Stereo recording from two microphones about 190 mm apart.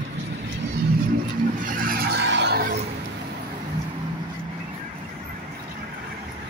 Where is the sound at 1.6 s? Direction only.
50° right (ahead or behind).